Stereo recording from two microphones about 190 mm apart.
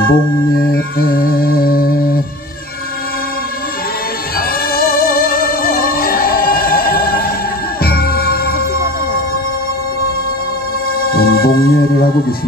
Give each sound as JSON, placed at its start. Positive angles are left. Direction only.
{"t": 0.0, "sound": "music", "side_deg": 50}
{"t": 4.4, "sound": "music", "side_deg": 50}
{"t": 11.0, "sound": "music", "side_deg": 50}